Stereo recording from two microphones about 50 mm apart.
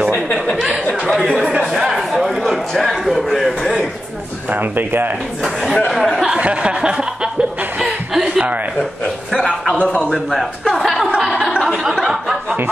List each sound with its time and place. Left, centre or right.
1.7 s a sound: centre
4.5 s speech: right
5.4 s speech: centre
6.4 s chuckle: right
10.7 s speech: centre
11.1 s a sound: centre